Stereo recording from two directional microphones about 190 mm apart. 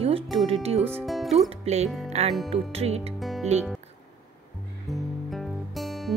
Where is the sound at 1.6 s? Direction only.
35° right (ahead or behind).